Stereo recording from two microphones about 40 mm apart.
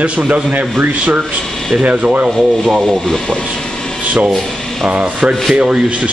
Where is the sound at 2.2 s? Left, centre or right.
Centre.